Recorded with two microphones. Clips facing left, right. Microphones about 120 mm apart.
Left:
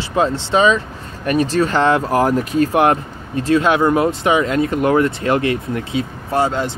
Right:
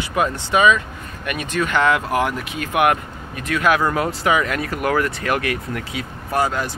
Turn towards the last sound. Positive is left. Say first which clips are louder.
# left 3 dB
turn(degrees=25)  # may be behind; listen again after turning